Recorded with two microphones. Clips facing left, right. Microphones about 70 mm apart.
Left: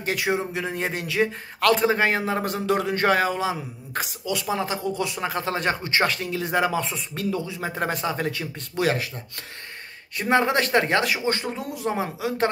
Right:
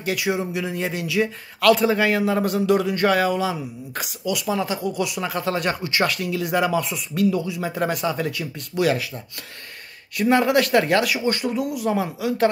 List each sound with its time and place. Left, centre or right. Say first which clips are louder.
0.0 s speech: right 1 dB; left
10.1 s speech: right 3 dB; left